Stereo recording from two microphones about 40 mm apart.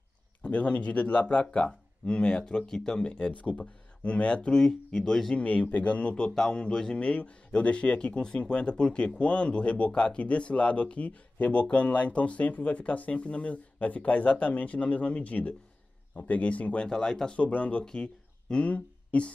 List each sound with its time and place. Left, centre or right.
0.4 s speech: left
2.0 s speech: left
3.1 s speech: left
5.3 s speech: left
6.3 s speech: centre
7.0 s speech: left
16.8 s speech: centre
17.4 s speech: left
17.8 s a sound: left
18.6 s speech: left